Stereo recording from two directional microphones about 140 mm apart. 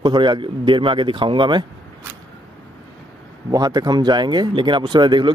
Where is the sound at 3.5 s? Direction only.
30° right (ahead or behind).